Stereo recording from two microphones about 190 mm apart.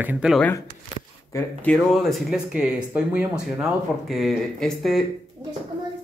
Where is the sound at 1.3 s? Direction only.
5° left (ahead or behind).